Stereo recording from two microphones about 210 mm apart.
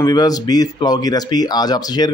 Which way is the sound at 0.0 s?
20° left (ahead or behind).